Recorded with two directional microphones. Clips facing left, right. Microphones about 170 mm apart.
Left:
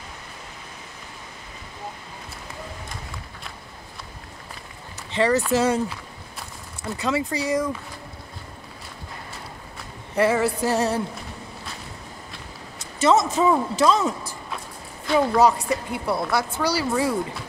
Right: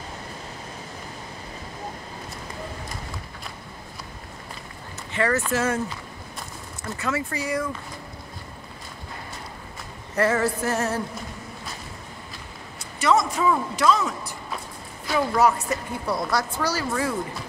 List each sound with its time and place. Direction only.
5.1 s speech: 25° left (ahead or behind)
7.0 s speech: 20° left (ahead or behind)
10.1 s speech: 10° left (ahead or behind)
13.0 s speech: 25° left (ahead or behind)
15.1 s speech: 20° left (ahead or behind)